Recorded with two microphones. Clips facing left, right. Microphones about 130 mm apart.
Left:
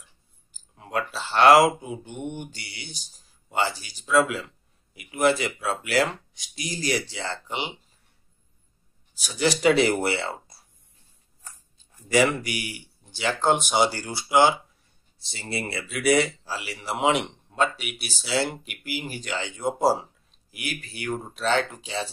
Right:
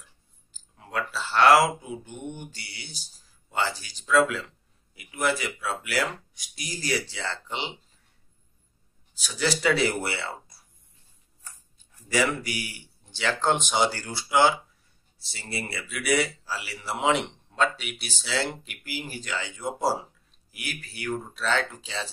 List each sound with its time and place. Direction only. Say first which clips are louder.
0.7 s speech: left 2 dB; 20° left (ahead or behind)
5.1 s speech: left 5 dB; 25° left (ahead or behind)
9.1 s speech: left 3 dB; 15° left (ahead or behind)
13.1 s speech: left 2 dB; 10° left (ahead or behind)